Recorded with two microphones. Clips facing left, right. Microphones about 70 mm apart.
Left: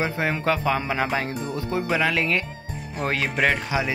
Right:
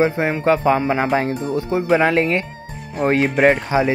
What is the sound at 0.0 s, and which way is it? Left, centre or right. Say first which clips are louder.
Speech: right 7 dB; right.